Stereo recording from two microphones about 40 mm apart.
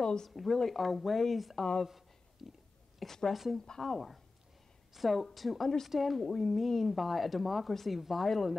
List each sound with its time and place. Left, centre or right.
0.0 s speech: centre
0.3 s speech: centre
2.4 s a sound: centre
3.0 s a woman's voice: centre
3.8 s speech: centre